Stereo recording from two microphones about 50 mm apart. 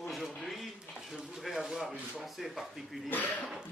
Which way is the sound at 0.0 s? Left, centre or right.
Centre.